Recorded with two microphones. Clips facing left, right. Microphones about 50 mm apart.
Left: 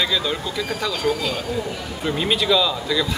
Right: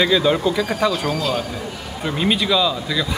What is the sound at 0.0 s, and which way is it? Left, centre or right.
Speech, centre.